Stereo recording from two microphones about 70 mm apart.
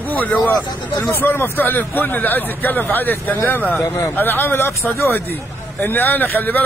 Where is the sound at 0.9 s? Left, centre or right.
Left.